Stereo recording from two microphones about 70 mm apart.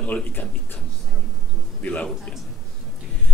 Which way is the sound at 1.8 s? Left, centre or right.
Centre.